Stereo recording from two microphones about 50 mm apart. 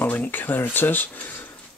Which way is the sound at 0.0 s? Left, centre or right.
Left.